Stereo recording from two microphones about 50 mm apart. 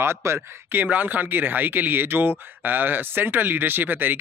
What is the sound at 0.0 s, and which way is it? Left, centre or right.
Speech, right.